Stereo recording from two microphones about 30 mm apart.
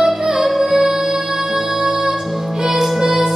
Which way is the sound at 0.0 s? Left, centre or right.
Centre.